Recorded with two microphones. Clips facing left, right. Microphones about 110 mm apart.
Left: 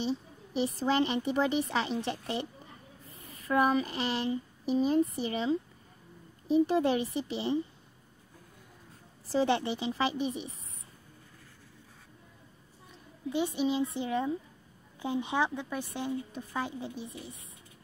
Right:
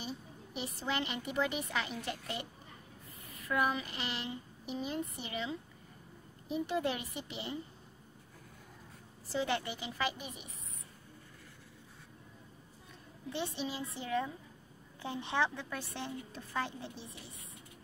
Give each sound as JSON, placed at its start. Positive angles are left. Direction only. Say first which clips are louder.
{"t": 0.6, "sound": "a woman's voice", "louder": "left 9 dB", "side_deg": 35}
{"t": 9.3, "sound": "a woman's voice", "louder": "left 7 dB", "side_deg": 30}
{"t": 13.3, "sound": "a woman's voice", "louder": "left 9 dB", "side_deg": 15}